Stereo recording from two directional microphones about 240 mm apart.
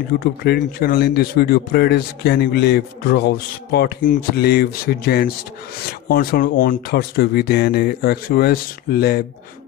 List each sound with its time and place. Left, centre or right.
0.2 s speech: left